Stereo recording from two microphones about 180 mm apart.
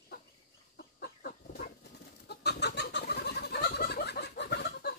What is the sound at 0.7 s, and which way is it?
Chicken, 60° left (ahead or behind).